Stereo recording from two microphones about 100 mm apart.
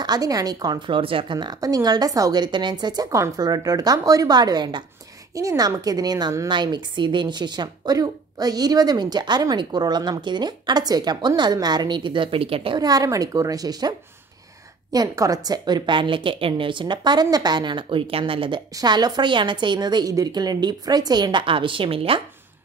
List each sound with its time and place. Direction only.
0.0 s speech: 40° right (ahead or behind)
5.3 s speech: 35° right (ahead or behind); by 12.7 s 70° right (ahead or behind)
12.7 s speech: 40° right (ahead or behind); by 18.6 s 60° right (ahead or behind)
18.8 s speech: 45° right (ahead or behind); by 22.2 s 65° right (ahead or behind)